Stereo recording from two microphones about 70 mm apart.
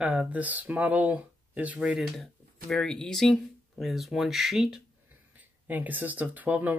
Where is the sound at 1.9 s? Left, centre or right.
Centre.